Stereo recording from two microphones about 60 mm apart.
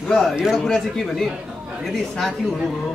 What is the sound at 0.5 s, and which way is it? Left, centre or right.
Speech, centre.